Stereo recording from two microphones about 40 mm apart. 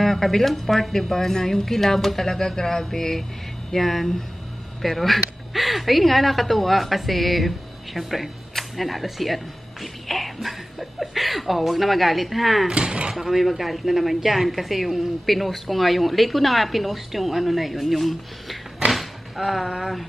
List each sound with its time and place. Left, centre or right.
0.0 s a woman's voice: centre
12.6 s speech: right
13.1 s a woman's voice: centre